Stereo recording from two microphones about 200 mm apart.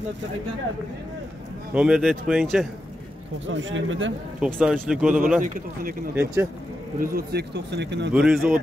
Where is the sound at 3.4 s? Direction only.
70° right (ahead or behind).